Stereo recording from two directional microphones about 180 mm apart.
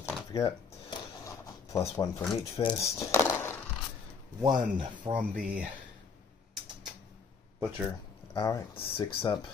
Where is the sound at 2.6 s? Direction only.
25° left (ahead or behind).